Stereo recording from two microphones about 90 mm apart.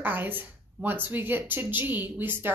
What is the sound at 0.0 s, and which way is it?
Speech, 20° right (ahead or behind).